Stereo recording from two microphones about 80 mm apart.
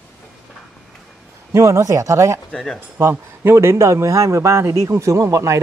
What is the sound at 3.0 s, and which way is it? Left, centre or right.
A man's voice, right.